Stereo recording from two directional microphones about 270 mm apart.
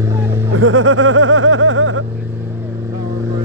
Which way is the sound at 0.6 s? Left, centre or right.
Right.